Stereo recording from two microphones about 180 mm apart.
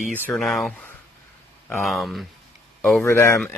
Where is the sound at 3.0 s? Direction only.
15° left (ahead or behind).